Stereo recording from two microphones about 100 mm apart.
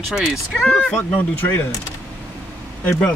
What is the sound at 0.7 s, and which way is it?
Speech, 10° left (ahead or behind).